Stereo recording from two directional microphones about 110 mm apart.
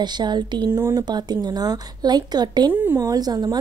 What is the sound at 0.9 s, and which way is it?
A woman's voice, 40° right (ahead or behind).